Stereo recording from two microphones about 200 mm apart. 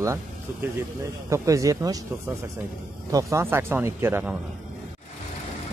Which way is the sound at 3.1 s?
15° right (ahead or behind).